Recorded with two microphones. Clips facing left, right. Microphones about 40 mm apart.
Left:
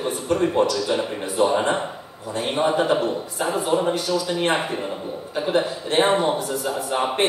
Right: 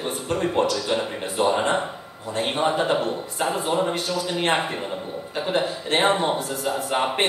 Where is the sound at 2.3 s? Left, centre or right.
Right.